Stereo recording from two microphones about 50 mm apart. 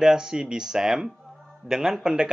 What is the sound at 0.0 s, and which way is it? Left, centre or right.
A man's voice, centre.